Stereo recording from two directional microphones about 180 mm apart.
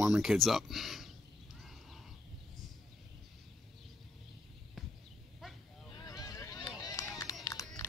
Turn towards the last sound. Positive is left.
turn(degrees=20)  # may be behind; listen again after turning